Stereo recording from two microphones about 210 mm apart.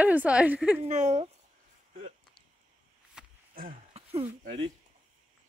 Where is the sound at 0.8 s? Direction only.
35° right (ahead or behind).